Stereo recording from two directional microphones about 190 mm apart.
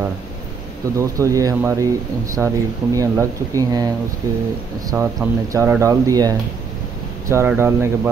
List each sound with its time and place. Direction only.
0.9 s speech: 15° right (ahead or behind)
4.9 s speech: 15° right (ahead or behind)